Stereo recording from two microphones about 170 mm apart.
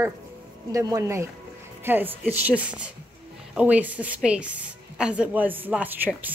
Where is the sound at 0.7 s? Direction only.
20° right (ahead or behind).